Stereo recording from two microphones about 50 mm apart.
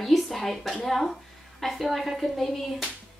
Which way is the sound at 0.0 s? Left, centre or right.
Centre.